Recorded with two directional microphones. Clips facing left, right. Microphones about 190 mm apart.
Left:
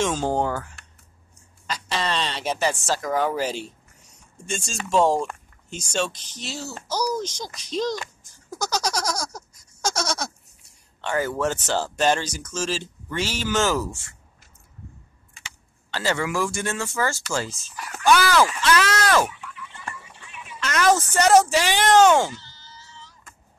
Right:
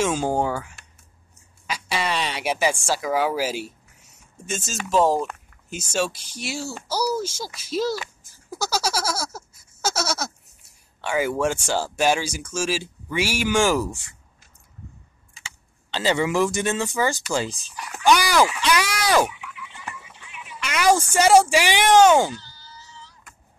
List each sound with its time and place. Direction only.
0.0 s speech: 10° right (ahead or behind)
15.9 s speech: 20° right (ahead or behind)